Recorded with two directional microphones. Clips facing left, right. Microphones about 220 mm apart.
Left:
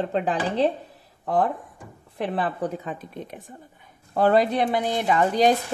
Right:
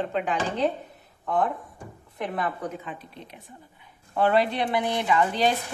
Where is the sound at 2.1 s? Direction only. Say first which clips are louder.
Left 3 dB; 30° left (ahead or behind).